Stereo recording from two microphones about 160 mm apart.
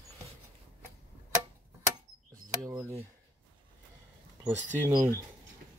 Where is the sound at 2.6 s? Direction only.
15° right (ahead or behind).